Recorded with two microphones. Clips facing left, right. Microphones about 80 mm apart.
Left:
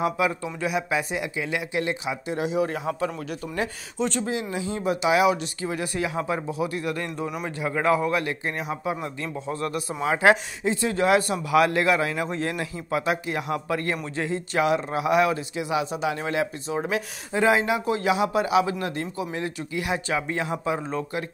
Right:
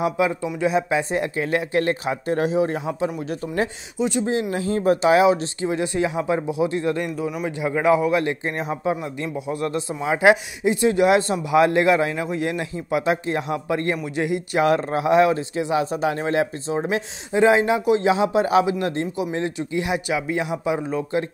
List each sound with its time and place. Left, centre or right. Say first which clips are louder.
0.0 s a man's voice: right 3 dB; centre
1.1 s speech: right 6 dB; right
2.5 s a man's voice: right 3 dB; right; by 4.3 s centre
4.5 s a man's voice: right 6 dB; right
7.2 s a man's voice: right 4 dB; centre
7.6 s a man's voice: right 4 dB; centre
14.6 s speech: right 4 dB; right
15.0 s a man's voice: right 5 dB; right